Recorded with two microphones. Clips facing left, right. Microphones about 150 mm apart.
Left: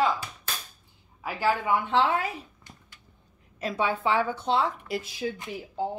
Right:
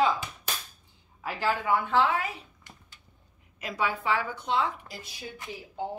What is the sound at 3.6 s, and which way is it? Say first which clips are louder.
A woman's voice: left 3 dB; 30° left (ahead or behind).